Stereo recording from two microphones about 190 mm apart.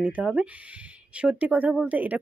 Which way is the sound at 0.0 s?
5° right (ahead or behind).